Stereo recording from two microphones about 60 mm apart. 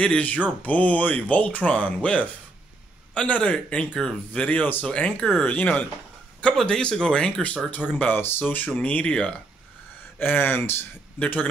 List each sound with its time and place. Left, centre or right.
0.0 s speech: left
6.5 s speech: centre
10.1 s speech: left